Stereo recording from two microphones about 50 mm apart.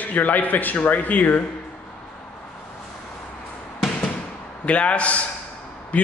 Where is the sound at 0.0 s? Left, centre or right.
Left.